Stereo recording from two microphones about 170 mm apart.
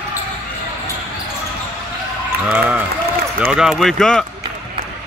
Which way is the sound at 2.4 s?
10° right (ahead or behind).